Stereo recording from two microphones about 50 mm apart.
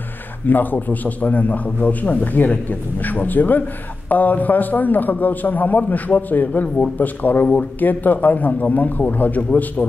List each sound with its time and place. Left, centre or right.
0.5 s a man's voice: left